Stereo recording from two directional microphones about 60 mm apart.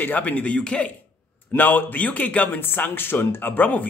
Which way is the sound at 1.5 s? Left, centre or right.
Left.